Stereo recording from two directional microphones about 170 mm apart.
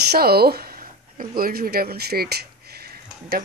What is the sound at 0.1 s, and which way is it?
Speech, 65° right (ahead or behind).